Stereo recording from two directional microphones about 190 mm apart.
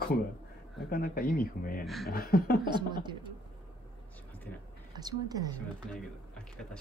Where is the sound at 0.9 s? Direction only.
50° left (ahead or behind).